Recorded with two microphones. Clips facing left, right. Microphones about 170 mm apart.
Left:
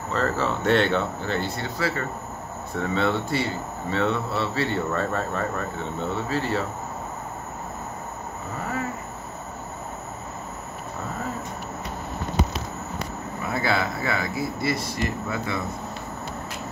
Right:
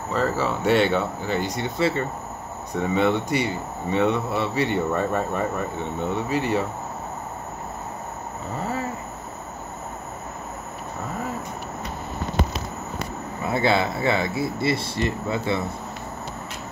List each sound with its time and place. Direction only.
0.1 s speech: 10° right (ahead or behind)
13.5 s speech: 25° right (ahead or behind)